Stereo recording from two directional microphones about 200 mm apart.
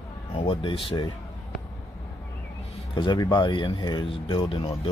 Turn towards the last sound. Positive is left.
turn(degrees=25)  # may be behind; listen again after turning